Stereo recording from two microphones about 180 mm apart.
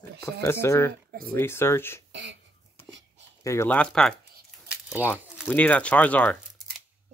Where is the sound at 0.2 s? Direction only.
15° left (ahead or behind).